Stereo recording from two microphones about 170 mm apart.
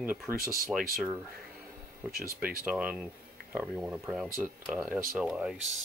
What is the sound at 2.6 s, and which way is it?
Speech, 10° right (ahead or behind).